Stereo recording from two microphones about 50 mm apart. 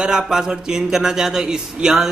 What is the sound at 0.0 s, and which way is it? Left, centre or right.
A man's voice, centre.